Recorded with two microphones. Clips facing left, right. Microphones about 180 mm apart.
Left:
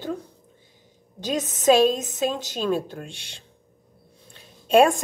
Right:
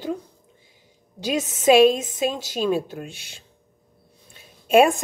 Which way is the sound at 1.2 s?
10° right (ahead or behind).